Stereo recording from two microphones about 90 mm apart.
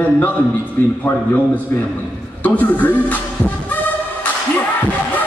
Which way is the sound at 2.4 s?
20° left (ahead or behind).